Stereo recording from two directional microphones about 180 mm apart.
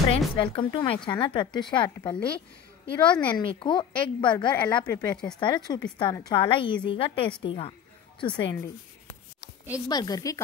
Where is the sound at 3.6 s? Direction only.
25° left (ahead or behind).